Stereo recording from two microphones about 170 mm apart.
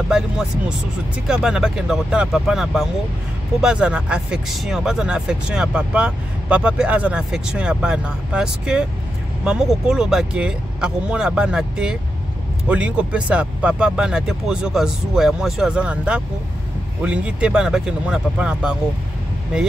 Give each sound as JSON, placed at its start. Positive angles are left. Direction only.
{"t": 0.1, "sound": "speech", "side_deg": -5}